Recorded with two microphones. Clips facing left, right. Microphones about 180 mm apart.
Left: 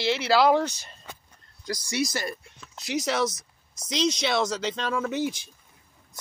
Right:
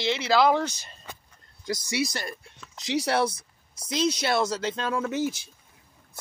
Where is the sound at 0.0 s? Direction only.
5° left (ahead or behind).